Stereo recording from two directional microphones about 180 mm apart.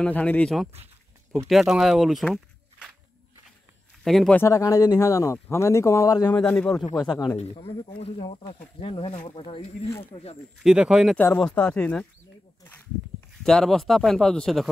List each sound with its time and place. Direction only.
0.0 s speech: 5° left (ahead or behind)
4.0 s speech: centre (ahead or behind)
4.4 s speech: 15° left (ahead or behind)
6.3 s speech: 5° left (ahead or behind)
7.3 s speech: 30° left (ahead or behind)
10.6 s speech: 5° right (ahead or behind)
13.4 s speech: 5° left (ahead or behind)